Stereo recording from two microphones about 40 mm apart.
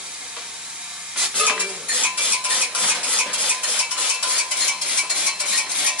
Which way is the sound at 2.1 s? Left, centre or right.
Right.